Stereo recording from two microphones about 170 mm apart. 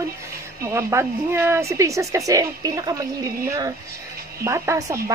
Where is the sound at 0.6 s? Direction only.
15° right (ahead or behind).